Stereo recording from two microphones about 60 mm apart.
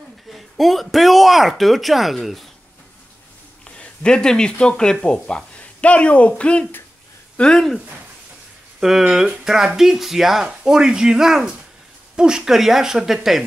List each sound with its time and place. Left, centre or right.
0.3 s speech: centre
3.6 s speech: centre
8.7 s speech: centre